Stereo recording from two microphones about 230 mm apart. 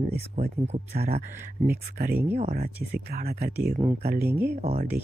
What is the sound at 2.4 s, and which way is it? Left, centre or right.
Speech, right.